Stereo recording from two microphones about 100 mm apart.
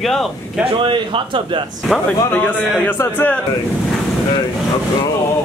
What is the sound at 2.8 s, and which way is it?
Speech, 20° left (ahead or behind).